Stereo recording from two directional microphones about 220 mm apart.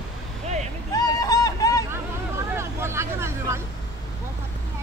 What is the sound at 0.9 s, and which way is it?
Vehicle, 15° left (ahead or behind).